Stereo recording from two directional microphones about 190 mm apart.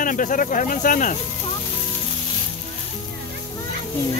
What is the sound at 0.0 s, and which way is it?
Speech, 45° left (ahead or behind).